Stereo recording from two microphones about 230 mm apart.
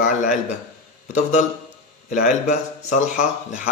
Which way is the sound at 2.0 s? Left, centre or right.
Left.